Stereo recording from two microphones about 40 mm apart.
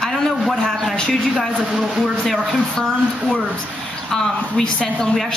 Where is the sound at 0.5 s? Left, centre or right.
Centre.